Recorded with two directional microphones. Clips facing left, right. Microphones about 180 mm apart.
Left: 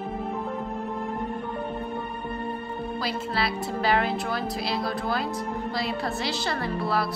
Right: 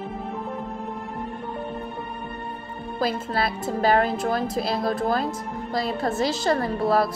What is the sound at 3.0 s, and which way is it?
A woman's voice, 50° right (ahead or behind).